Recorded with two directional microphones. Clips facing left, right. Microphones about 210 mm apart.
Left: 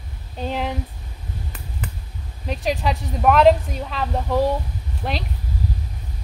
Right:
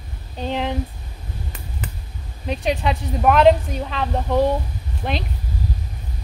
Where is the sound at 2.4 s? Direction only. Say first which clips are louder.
Right 1 dB; centre (ahead or behind).